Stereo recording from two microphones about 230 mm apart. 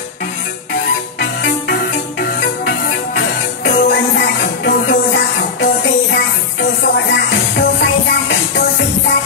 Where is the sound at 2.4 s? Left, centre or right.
Left.